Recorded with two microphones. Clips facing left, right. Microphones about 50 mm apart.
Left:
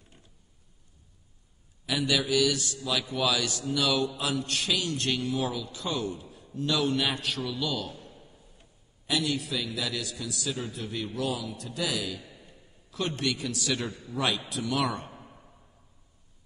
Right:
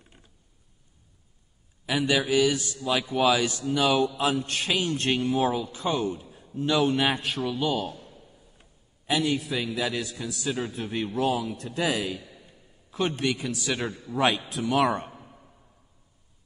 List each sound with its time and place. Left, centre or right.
1.9 s a man's voice: right
9.0 s a man's voice: right
15.1 s a sound: centre